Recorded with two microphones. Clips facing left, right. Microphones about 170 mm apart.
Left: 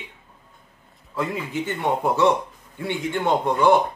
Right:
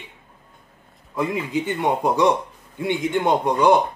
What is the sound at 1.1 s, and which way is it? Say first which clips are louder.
A man's voice: right 3 dB; 15° right (ahead or behind).